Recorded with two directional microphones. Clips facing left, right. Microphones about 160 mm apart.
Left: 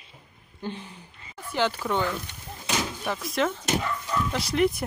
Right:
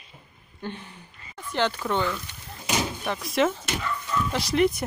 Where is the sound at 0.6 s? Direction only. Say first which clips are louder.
Left 1 dB; 10° left (ahead or behind).